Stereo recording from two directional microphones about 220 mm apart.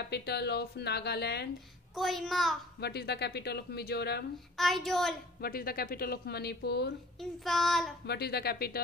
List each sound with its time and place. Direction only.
0.1 s speech: 50° left (ahead or behind)
2.0 s child singing: centre (ahead or behind)
2.8 s speech: 45° left (ahead or behind)
4.6 s child singing: centre (ahead or behind)
5.4 s speech: 40° left (ahead or behind)
7.2 s child singing: centre (ahead or behind)
8.1 s speech: 45° left (ahead or behind)